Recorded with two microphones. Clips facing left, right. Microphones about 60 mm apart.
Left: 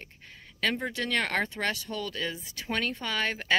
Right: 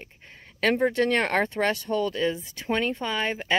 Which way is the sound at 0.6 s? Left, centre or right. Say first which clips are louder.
Right 8 dB; right.